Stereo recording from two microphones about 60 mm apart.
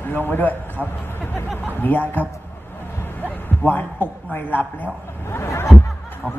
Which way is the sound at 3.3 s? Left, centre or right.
Left.